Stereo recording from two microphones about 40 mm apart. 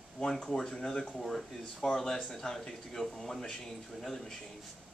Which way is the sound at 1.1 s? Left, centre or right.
Centre.